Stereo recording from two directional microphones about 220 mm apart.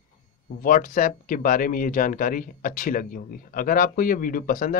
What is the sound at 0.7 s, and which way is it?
Speech, 40° left (ahead or behind).